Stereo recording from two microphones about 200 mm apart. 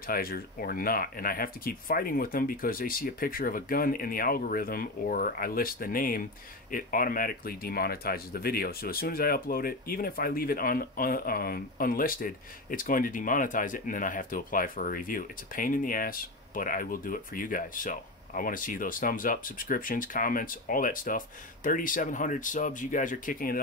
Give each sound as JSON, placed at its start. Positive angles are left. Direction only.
{"t": 0.0, "sound": "speech", "side_deg": 45}